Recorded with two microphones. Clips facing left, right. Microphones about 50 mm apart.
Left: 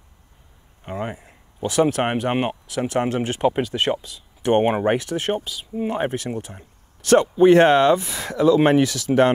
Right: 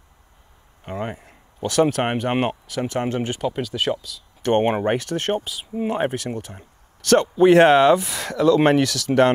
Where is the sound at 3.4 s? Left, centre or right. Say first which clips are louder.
Left 4 dB; left.